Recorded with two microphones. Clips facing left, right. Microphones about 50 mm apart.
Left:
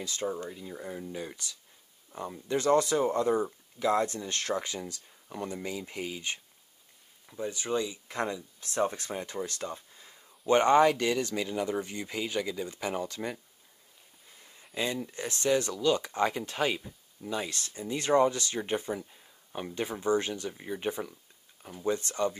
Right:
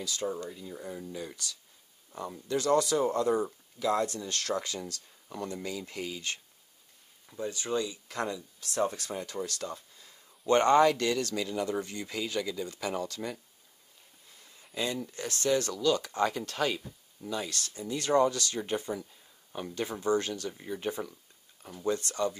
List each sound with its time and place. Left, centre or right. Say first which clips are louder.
0.0 s speech: even; left
14.8 s speech: left 1 dB; centre
21.9 s speech: left 2 dB; left